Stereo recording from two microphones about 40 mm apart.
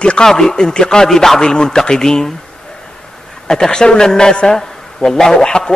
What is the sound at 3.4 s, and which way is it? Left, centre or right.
A man's voice, centre.